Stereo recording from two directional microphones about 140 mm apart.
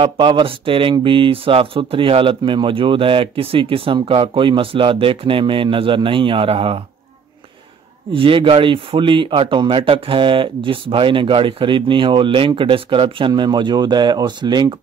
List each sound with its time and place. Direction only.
0.0 s speech: 35° right (ahead or behind)
8.1 s speech: 40° right (ahead or behind)